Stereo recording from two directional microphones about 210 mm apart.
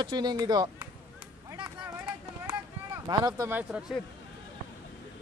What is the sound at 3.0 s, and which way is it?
Speech, 15° right (ahead or behind).